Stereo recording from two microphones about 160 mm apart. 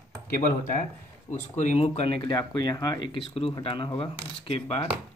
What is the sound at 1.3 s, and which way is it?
Speech, 45° left (ahead or behind).